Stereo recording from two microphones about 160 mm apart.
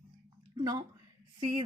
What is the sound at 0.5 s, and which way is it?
A woman's voice, 25° right (ahead or behind).